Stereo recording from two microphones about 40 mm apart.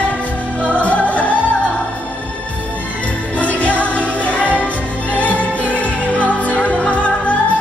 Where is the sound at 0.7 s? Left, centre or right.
Left.